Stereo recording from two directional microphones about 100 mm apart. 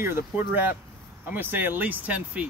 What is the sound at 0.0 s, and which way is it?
Speech, 20° right (ahead or behind).